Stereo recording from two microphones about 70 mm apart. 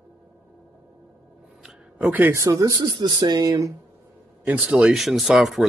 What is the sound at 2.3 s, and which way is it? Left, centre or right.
Speech, right.